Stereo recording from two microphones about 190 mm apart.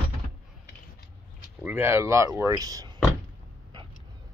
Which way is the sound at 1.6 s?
10° right (ahead or behind).